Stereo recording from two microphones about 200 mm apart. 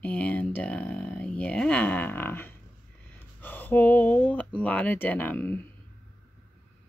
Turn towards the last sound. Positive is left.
turn(degrees=10)  # may be behind; listen again after turning